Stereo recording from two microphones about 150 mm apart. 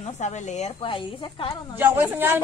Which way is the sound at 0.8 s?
35° left (ahead or behind).